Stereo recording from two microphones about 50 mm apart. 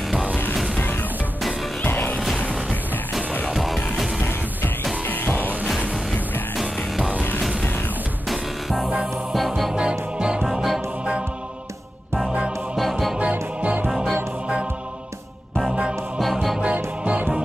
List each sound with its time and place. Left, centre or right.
0.7 s music: left
3.5 s music: centre
4.2 s music: left
8.3 s music: centre
9.8 s music: centre
10.4 s music: centre
12.3 s music: right
12.7 s music: centre
13.2 s music: right
13.8 s music: centre
15.7 s music: centre
16.2 s music: centre
16.6 s music: right